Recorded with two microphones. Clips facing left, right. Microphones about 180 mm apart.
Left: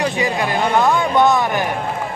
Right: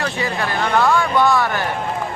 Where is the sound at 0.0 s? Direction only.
15° left (ahead or behind).